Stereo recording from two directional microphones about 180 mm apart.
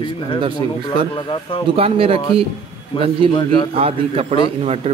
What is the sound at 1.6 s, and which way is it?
Speech, 30° right (ahead or behind).